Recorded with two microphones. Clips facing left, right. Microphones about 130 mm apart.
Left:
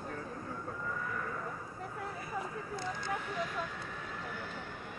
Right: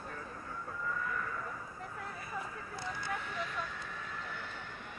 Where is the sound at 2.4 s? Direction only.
20° left (ahead or behind).